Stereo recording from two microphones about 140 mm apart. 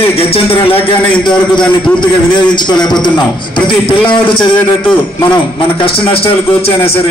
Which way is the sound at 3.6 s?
35° left (ahead or behind).